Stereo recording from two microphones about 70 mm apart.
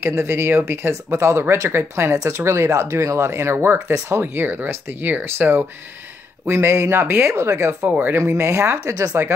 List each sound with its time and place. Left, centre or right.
0.0 s speech: right